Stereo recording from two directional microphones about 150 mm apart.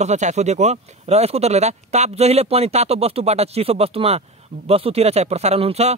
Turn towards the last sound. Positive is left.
turn(degrees=-45)  # may be behind; listen again after turning